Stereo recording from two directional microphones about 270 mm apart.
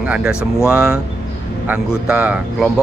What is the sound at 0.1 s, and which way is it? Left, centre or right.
Speech, centre.